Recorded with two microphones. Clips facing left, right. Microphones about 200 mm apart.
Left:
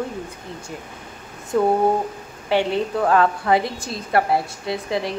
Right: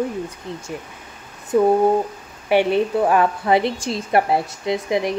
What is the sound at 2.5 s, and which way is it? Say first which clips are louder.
A woman's voice: right 3 dB; 20° right (ahead or behind).